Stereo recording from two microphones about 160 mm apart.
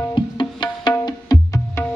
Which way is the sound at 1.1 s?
20° left (ahead or behind).